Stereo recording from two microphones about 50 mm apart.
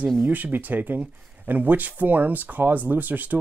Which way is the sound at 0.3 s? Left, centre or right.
Right.